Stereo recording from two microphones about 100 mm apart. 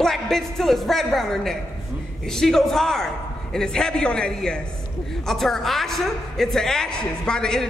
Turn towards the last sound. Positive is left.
turn(degrees=5)  # may be behind; listen again after turning